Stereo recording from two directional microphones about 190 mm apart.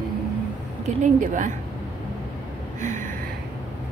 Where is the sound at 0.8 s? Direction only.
40° right (ahead or behind).